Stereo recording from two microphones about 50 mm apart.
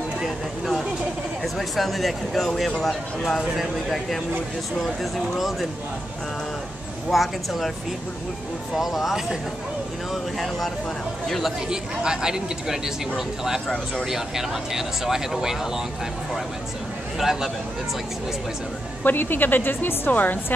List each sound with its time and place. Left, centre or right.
0.2 s speech: centre
7.1 s speech: centre
8.7 s speech: centre
11.7 s speech: centre
14.0 s speech: centre
17.2 s speech: centre
19.0 s a woman's voice: left